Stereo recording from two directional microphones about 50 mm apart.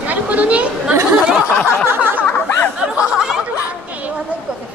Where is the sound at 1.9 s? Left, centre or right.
Right.